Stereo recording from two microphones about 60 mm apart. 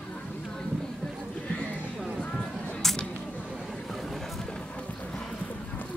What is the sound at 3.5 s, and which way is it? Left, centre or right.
Vehicle, centre.